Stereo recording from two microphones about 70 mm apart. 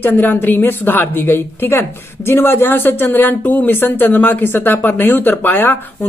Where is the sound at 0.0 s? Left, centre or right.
Left.